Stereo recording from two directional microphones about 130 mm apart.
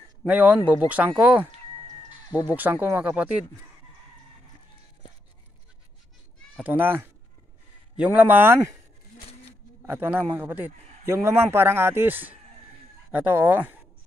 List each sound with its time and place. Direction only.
0.2 s speech: 10° right (ahead or behind)
2.5 s speech: 15° right (ahead or behind)
6.5 s speech: 15° right (ahead or behind)
9.8 s speech: 15° right (ahead or behind)